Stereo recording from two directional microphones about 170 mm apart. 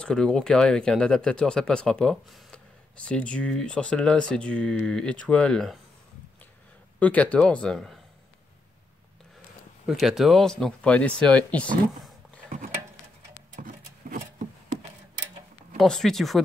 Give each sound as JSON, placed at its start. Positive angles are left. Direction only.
{"t": 0.0, "sound": "speech", "side_deg": 5}
{"t": 7.0, "sound": "speech", "side_deg": 10}
{"t": 9.8, "sound": "speech", "side_deg": 0}
{"t": 13.6, "sound": "a sound", "side_deg": -50}
{"t": 15.8, "sound": "speech", "side_deg": 0}